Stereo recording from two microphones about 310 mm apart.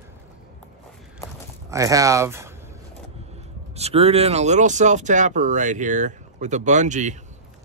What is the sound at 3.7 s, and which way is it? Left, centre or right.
Speech, centre.